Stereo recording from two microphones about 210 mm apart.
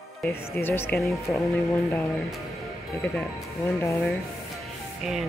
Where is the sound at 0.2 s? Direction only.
10° left (ahead or behind).